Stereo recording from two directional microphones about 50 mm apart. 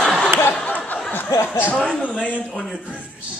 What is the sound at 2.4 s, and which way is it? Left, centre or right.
Speech, centre.